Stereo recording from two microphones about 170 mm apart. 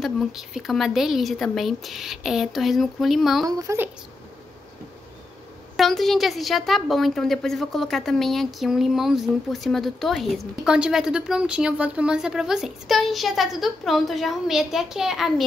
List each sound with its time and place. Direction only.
0.0 s a woman's voice: centre (ahead or behind)
3.4 s speech: 20° right (ahead or behind)
5.8 s a woman's voice: centre (ahead or behind)